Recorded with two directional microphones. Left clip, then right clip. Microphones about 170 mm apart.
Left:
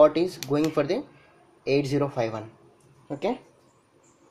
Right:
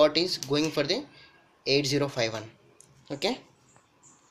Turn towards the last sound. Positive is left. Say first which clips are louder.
# left 1 dB
turn(degrees=5)  # may be behind; listen again after turning